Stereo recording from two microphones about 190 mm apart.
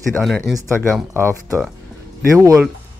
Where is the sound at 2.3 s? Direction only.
15° right (ahead or behind).